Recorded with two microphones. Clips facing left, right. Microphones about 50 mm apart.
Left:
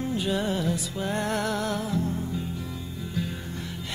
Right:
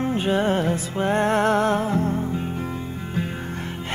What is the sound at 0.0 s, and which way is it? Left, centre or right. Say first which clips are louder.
Music: right 6 dB; right.